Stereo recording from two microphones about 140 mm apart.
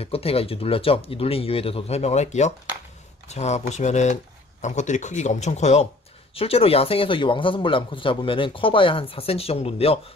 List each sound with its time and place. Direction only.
0.0 s a man's voice: 45° left (ahead or behind)